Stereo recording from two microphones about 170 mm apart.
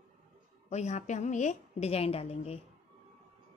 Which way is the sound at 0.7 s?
40° left (ahead or behind).